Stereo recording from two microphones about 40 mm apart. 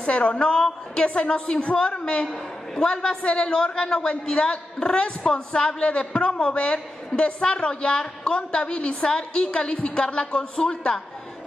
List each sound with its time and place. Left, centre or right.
0.0 s a man's voice: left